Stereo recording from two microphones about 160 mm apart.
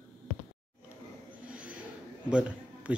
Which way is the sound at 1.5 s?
5° right (ahead or behind).